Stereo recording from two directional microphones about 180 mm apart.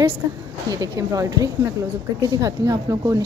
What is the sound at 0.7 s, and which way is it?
Speech, 20° right (ahead or behind).